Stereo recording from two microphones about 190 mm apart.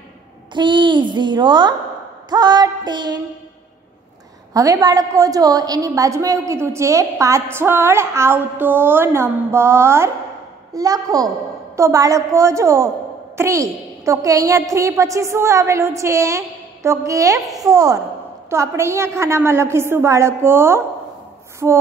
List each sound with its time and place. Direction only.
0.6 s a child's voice: 25° right (ahead or behind)
4.6 s a woman's voice: 20° right (ahead or behind)